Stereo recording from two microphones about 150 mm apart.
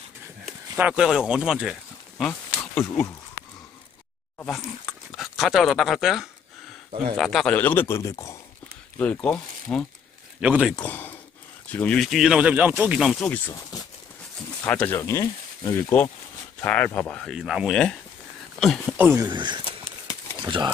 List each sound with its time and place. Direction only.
0.7 s speech: 10° right (ahead or behind)
4.5 s speech: centre (ahead or behind); by 8.4 s 20° left (ahead or behind)
8.9 s speech: 10° left (ahead or behind)
10.4 s speech: 5° right (ahead or behind)
10.8 s speech: 15° left (ahead or behind)
14.6 s speech: 10° left (ahead or behind)
17.4 s speech: 5° right (ahead or behind)
18.9 s speech: 15° right (ahead or behind)
19.2 s speech: 30° right (ahead or behind)